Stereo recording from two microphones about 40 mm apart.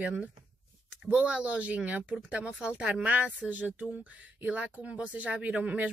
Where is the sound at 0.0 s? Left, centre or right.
Right.